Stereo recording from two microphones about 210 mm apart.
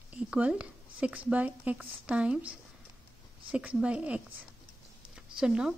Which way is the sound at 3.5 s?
5° right (ahead or behind).